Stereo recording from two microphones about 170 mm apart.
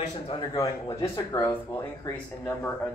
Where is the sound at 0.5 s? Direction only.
20° left (ahead or behind).